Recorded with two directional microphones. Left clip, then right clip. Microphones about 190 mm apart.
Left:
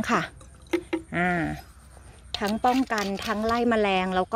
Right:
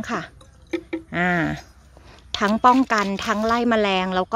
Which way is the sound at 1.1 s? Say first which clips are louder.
Right 6 dB; 15° right (ahead or behind).